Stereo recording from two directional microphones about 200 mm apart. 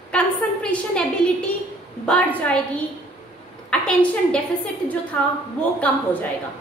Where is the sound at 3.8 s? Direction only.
5° left (ahead or behind).